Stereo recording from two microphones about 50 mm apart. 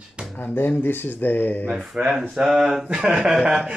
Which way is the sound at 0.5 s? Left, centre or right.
Left.